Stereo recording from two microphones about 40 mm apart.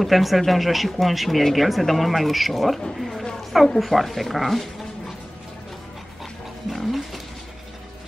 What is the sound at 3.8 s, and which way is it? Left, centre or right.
Speech, centre.